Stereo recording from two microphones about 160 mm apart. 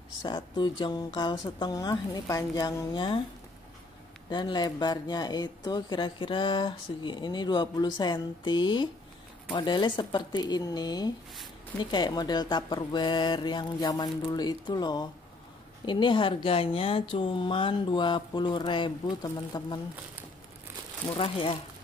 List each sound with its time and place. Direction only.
0.2 s speech: 30° left (ahead or behind)
4.3 s speech: 30° left (ahead or behind)
21.2 s speech: 35° left (ahead or behind)